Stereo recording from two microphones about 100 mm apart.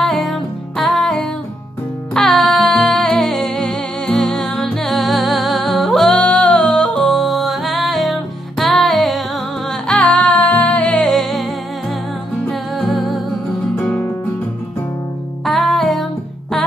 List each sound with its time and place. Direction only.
0.0 s music: centre (ahead or behind)
12.4 s music: centre (ahead or behind)
13.7 s music: 15° left (ahead or behind)
15.4 s music: 5° left (ahead or behind)